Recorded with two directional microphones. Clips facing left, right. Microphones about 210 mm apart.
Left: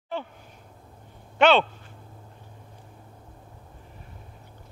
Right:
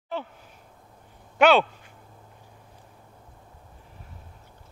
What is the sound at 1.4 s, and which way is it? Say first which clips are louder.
Speech: right 1 dB; 10° right (ahead or behind).